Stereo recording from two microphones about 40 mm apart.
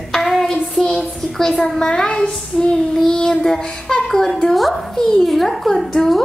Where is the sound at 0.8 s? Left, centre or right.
Centre.